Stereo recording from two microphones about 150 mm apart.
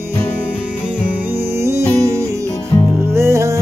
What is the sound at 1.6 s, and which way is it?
Music, 20° right (ahead or behind).